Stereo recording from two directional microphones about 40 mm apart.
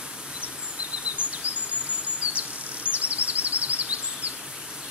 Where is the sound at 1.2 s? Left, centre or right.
Right.